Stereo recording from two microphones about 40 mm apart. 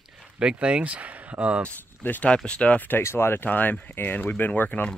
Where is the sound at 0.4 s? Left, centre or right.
Right.